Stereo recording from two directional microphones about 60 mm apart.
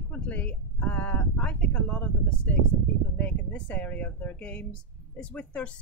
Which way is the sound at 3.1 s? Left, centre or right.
Left.